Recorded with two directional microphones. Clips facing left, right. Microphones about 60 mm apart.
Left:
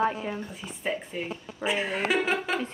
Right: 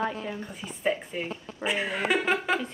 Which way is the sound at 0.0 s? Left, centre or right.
Centre.